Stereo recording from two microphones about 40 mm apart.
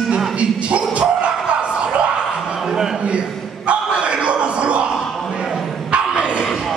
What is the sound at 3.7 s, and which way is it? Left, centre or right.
Crowd, right.